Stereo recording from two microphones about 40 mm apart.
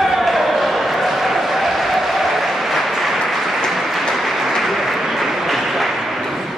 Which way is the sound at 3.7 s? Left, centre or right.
Centre.